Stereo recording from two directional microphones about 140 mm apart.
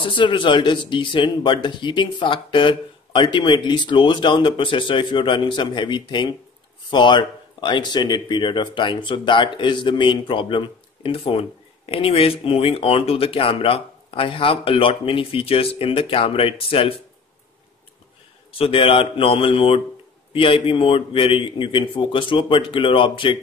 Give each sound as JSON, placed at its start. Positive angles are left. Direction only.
{"t": 0.0, "sound": "speech", "side_deg": 35}
{"t": 18.6, "sound": "speech", "side_deg": 40}